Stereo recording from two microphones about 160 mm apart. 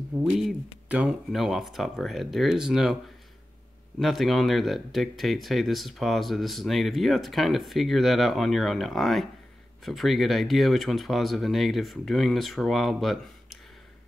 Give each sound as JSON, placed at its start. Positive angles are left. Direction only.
{"t": 0.1, "sound": "speech", "side_deg": -10}
{"t": 4.0, "sound": "speech", "side_deg": 0}